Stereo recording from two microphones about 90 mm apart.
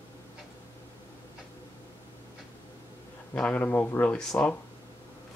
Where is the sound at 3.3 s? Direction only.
15° left (ahead or behind).